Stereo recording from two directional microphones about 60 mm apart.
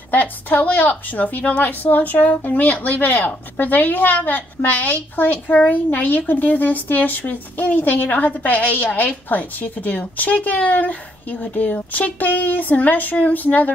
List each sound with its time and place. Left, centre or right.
0.1 s speech: left